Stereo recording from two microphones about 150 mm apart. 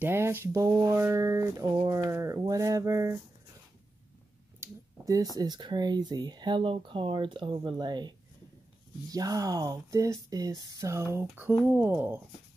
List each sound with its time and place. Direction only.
0.0 s speech: 15° right (ahead or behind)
4.6 s a sound: 25° right (ahead or behind)
5.3 s speech: 25° right (ahead or behind)
9.1 s speech: 25° right (ahead or behind)